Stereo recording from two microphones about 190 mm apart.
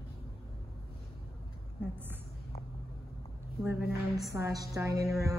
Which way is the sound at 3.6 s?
10° right (ahead or behind).